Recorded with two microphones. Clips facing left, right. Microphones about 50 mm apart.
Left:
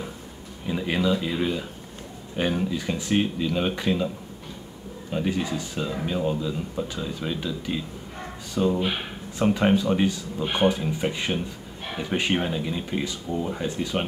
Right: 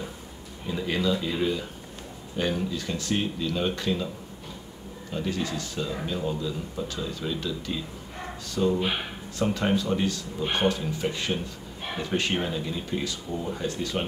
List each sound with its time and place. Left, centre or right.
0.7 s a sound: centre
1.3 s speech: centre
5.1 s speech: centre